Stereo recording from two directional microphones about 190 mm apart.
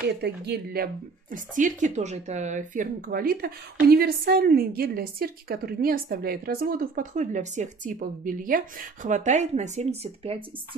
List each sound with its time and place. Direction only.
0.2 s speech: 60° right (ahead or behind)
1.3 s a woman's voice: 45° right (ahead or behind)